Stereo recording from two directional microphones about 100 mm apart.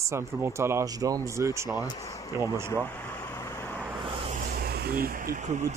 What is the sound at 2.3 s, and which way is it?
Speech, 30° right (ahead or behind).